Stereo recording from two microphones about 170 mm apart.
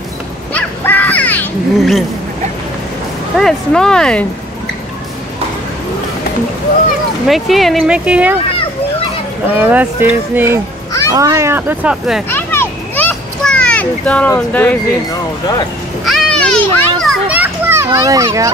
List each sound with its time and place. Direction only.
0.5 s a sound: 10° left (ahead or behind)
3.3 s speech: 5° left (ahead or behind)
7.2 s speech: centre (ahead or behind)
9.5 s speech: 10° right (ahead or behind)
12.3 s children playing: 10° left (ahead or behind)
16.1 s children playing: 5° left (ahead or behind)
17.4 s children playing: 15° right (ahead or behind)